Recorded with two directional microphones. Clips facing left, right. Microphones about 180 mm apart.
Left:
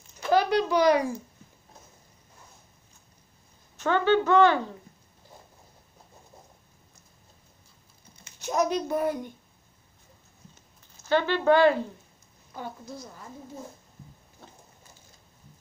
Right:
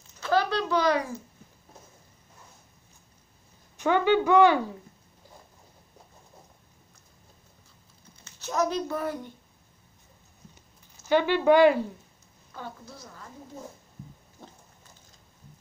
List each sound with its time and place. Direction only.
0.0 s a sound: 15° left (ahead or behind)
3.7 s a woman's voice: 15° right (ahead or behind)
8.2 s speech: 15° left (ahead or behind)
11.1 s a woman's voice: 15° right (ahead or behind)
12.5 s a woman's voice: 15° left (ahead or behind)
14.4 s a sound: 15° right (ahead or behind)